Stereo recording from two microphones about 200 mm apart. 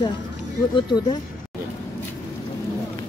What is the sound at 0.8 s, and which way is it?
Speech, 25° left (ahead or behind).